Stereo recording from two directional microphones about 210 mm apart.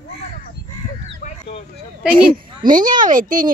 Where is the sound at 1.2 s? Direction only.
40° left (ahead or behind).